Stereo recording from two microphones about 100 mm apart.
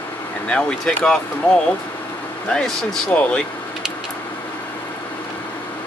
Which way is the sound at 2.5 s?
10° left (ahead or behind).